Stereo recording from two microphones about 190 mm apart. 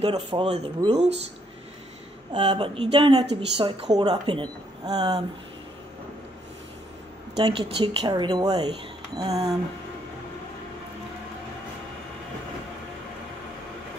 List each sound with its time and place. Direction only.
0.0 s speech: 30° right (ahead or behind)
2.3 s speech: 30° right (ahead or behind)
7.3 s speech: 25° right (ahead or behind)